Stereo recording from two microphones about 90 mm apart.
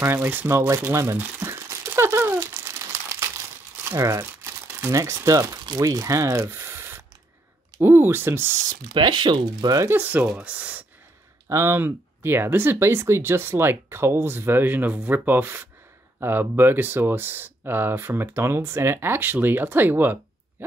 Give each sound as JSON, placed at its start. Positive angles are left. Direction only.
{"t": 0.0, "sound": "speech", "side_deg": -25}
{"t": 1.1, "sound": "crumpling", "side_deg": -30}
{"t": 3.9, "sound": "speech", "side_deg": -35}
{"t": 4.6, "sound": "crumpling", "side_deg": -20}
{"t": 4.9, "sound": "speech", "side_deg": -35}
{"t": 8.9, "sound": "speech", "side_deg": -60}
{"t": 9.8, "sound": "speech", "side_deg": -20}
{"t": 11.4, "sound": "speech", "side_deg": -30}